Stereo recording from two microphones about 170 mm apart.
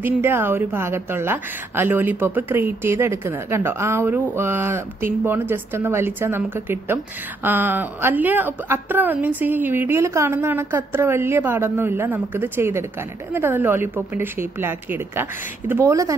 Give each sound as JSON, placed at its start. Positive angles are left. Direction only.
{"t": 0.0, "sound": "a woman's voice", "side_deg": -15}